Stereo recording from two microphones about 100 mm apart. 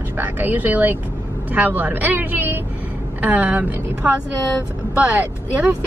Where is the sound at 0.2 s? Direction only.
20° right (ahead or behind).